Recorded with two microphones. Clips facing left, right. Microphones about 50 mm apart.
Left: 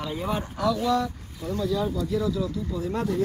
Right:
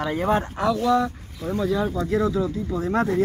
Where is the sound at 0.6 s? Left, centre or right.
Right.